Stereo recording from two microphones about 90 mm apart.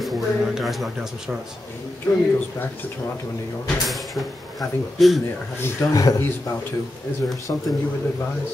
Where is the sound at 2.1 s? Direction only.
45° left (ahead or behind).